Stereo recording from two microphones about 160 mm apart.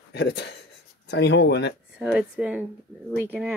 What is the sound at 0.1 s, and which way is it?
Speech, 90° left.